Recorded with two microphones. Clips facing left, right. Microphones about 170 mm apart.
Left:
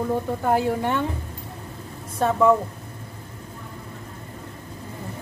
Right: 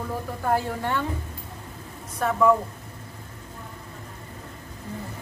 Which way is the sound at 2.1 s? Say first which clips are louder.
Left 2 dB; 25° left (ahead or behind).